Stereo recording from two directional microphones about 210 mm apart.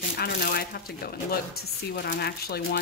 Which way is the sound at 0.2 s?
45° left (ahead or behind).